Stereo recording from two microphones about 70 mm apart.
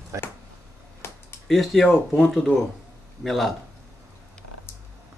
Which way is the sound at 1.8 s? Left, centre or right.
Centre.